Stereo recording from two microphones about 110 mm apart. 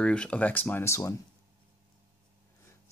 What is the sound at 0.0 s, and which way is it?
Speech, 10° left (ahead or behind).